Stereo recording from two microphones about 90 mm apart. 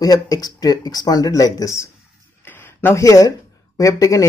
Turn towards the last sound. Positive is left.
turn(degrees=40)  # may be behind; listen again after turning